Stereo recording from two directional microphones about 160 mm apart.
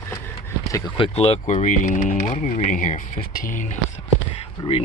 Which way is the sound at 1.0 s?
40° left (ahead or behind).